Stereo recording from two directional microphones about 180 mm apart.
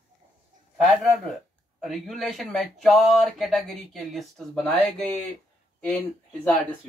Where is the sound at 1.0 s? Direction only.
Centre (ahead or behind).